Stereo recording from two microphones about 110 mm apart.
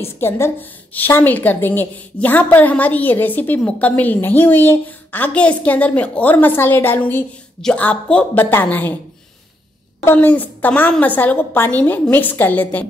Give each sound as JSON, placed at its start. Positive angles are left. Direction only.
{"t": 0.0, "sound": "a woman's voice", "side_deg": 20}
{"t": 10.0, "sound": "a woman's voice", "side_deg": 15}